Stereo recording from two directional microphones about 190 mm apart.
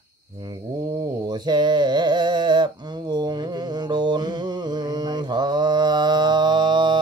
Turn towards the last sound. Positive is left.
turn(degrees=-25)  # may be behind; listen again after turning